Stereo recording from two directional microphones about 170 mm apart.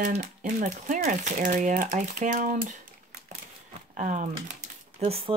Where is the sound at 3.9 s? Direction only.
45° right (ahead or behind).